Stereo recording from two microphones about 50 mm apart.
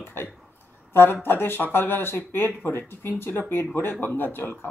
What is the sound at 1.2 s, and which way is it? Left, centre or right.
Speech, left.